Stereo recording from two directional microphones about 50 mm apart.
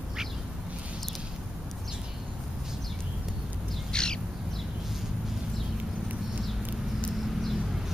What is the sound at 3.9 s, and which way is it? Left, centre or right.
Crow, centre.